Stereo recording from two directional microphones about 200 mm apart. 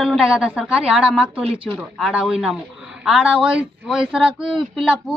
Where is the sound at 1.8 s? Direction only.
5° right (ahead or behind).